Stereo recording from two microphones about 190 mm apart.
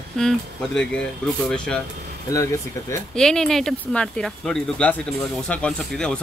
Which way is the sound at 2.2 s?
15° left (ahead or behind).